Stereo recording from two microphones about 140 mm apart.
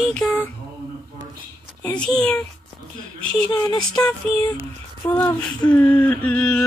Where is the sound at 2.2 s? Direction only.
10° left (ahead or behind).